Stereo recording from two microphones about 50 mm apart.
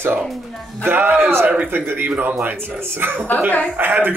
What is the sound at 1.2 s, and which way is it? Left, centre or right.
A man's voice, right.